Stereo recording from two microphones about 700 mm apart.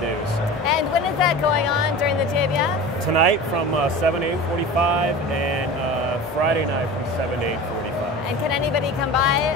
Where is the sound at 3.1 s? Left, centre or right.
Right.